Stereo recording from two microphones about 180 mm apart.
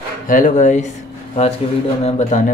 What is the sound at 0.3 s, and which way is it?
Speech, 45° left (ahead or behind).